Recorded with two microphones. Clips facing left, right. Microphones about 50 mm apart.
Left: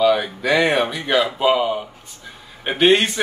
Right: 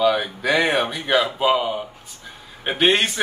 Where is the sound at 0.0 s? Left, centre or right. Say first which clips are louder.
Left 2 dB; centre.